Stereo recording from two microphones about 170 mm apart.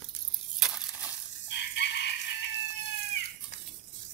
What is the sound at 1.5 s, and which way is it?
Chicken, 85° left.